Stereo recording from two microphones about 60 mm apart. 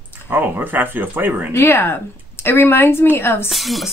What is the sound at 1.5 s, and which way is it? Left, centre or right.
Speech, left.